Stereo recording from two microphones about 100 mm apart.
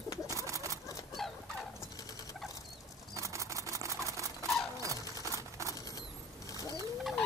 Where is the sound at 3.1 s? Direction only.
30° right (ahead or behind).